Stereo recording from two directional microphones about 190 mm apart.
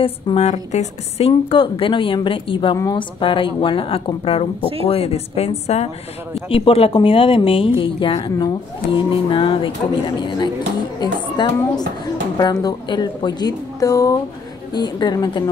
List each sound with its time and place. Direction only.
0.0 s a woman's voice: 30° left (ahead or behind)